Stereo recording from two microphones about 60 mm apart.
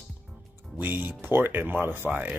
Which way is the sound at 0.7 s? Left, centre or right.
Right.